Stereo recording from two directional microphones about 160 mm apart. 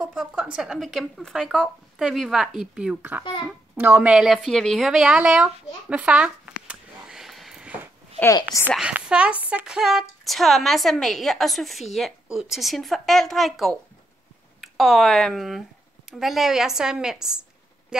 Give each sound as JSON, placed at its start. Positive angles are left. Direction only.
{"t": 0.0, "sound": "a woman's voice", "side_deg": -5}
{"t": 8.2, "sound": "a woman's voice", "side_deg": 20}
{"t": 8.7, "sound": "a woman's voice", "side_deg": -5}